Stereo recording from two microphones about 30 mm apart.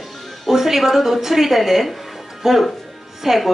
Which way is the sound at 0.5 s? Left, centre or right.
Centre.